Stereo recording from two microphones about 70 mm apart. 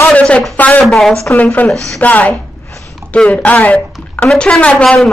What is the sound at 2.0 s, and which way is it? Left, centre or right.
Speech, left.